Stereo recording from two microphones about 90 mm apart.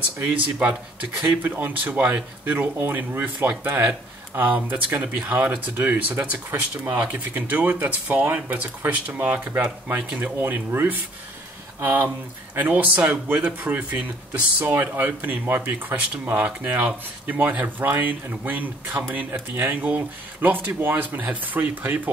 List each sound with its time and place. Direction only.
0.6 s speech: 15° right (ahead or behind)